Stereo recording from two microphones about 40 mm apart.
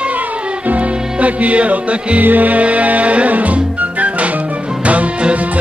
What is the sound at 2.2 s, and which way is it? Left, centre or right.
Music, right.